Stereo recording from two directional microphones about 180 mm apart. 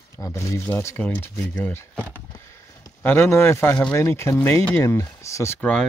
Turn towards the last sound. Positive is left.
turn(degrees=15)  # may be behind; listen again after turning